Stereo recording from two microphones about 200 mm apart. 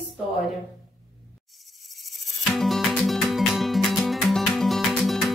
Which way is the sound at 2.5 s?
Centre (ahead or behind).